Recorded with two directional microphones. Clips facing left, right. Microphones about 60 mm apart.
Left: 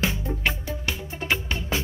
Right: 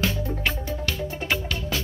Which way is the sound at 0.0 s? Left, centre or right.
Left.